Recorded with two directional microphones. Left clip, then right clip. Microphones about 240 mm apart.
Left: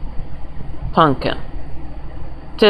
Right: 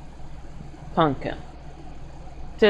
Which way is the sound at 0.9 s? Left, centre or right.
Left.